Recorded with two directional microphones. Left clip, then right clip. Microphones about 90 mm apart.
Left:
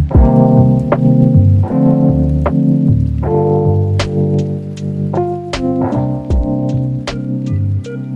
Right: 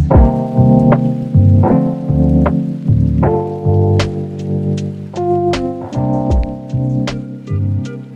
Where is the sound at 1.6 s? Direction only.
45° right (ahead or behind).